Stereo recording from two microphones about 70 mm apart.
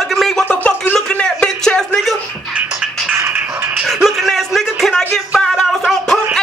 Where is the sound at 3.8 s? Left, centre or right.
Centre.